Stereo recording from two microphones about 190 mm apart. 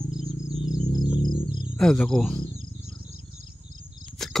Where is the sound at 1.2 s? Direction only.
25° left (ahead or behind).